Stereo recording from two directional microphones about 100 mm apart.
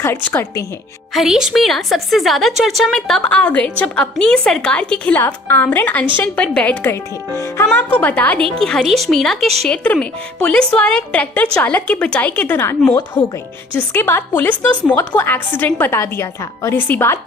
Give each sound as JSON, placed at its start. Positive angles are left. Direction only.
{"t": 0.0, "sound": "a woman's voice", "side_deg": 25}
{"t": 1.1, "sound": "a woman's voice", "side_deg": -5}
{"t": 7.9, "sound": "speech", "side_deg": 15}
{"t": 8.5, "sound": "a woman's voice", "side_deg": 5}
{"t": 13.7, "sound": "a woman's voice", "side_deg": 20}